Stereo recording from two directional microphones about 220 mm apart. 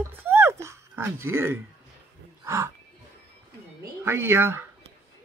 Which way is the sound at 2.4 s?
15° right (ahead or behind).